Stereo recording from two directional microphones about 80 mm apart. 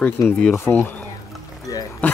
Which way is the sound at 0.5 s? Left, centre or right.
Left.